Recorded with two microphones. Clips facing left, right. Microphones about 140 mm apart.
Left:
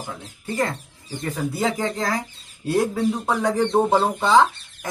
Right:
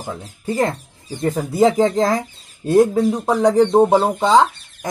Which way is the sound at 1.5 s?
20° right (ahead or behind).